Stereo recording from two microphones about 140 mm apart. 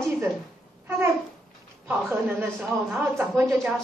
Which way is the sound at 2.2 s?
15° right (ahead or behind).